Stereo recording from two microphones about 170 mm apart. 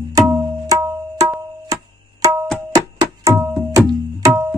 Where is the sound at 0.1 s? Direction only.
20° right (ahead or behind).